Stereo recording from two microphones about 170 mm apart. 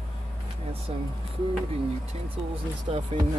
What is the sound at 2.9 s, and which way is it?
Speech, 35° right (ahead or behind).